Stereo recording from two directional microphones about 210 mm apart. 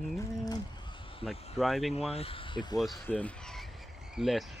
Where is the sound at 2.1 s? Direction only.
25° left (ahead or behind).